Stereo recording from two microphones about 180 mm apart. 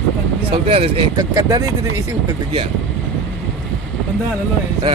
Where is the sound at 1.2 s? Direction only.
20° right (ahead or behind).